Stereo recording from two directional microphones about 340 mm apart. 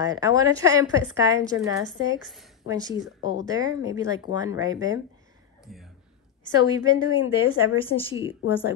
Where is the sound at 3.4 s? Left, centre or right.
Centre.